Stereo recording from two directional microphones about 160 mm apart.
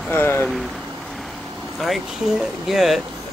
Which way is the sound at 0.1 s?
10° left (ahead or behind).